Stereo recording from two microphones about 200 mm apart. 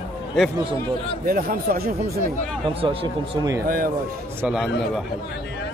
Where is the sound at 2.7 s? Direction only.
30° right (ahead or behind).